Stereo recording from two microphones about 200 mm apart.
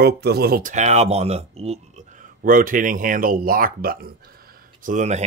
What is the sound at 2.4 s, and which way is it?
Speech, 45° right (ahead or behind).